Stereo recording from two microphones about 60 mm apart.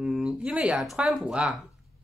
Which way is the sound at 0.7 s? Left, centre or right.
Centre.